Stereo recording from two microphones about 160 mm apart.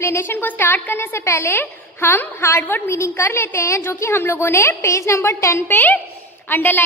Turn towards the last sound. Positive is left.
turn(degrees=10)  # may be behind; listen again after turning